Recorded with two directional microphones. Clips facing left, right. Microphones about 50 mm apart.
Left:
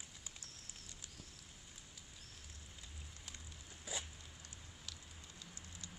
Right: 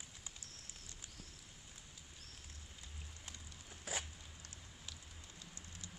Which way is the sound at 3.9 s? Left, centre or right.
Right.